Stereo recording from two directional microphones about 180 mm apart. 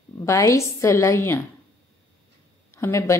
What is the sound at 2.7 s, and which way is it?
Speech, 15° left (ahead or behind).